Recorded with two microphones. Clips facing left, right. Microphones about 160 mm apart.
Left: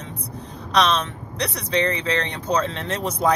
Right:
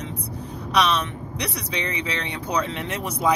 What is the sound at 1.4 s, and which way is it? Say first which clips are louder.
Speech: left 7 dB; 10° right (ahead or behind).